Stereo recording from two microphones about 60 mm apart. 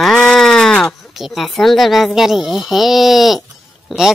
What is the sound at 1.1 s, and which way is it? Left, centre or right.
Speech, centre.